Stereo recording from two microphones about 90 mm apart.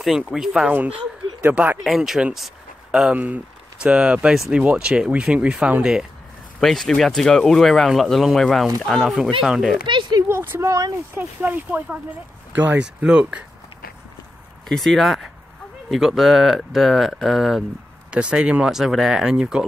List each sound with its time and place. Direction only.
0.3 s speech: 5° right (ahead or behind)
0.7 s speech: 15° right (ahead or behind)
1.8 s speech: 5° right (ahead or behind)
6.6 s speech: 5° left (ahead or behind)
9.8 s speech: 60° right (ahead or behind)
10.2 s a sound: 25° right (ahead or behind)
10.6 s speech: 35° right (ahead or behind)
11.1 s speech: 20° right (ahead or behind)
14.7 s speech: 5° left (ahead or behind)